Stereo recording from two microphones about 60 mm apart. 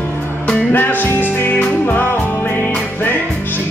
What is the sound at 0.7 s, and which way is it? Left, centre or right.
Music, left.